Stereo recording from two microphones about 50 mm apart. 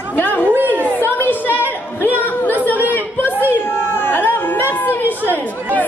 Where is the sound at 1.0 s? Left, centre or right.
Left.